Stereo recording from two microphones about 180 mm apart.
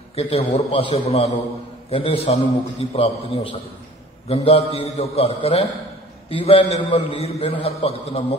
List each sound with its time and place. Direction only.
0.1 s a man's voice: 35° left (ahead or behind)